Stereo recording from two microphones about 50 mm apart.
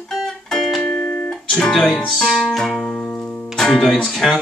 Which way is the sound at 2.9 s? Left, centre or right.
Left.